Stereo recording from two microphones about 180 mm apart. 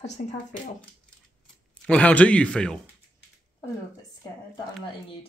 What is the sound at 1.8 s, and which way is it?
Speech, 5° left (ahead or behind).